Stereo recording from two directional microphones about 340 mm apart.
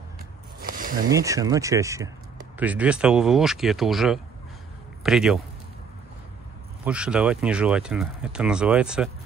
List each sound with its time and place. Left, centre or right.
0.6 s a sound: right
1.0 s speech: centre
6.8 s speech: centre